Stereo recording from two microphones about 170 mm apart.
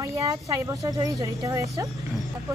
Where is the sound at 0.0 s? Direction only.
15° right (ahead or behind).